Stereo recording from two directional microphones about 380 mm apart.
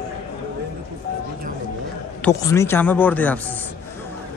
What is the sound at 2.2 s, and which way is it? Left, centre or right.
Speech, centre.